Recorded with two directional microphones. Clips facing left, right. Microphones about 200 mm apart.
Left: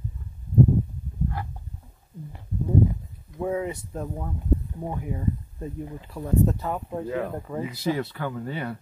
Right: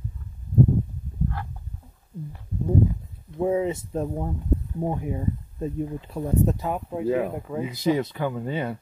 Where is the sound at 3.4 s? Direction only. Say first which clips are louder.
Right 4 dB; 25° right (ahead or behind); by 7.6 s 5° right (ahead or behind).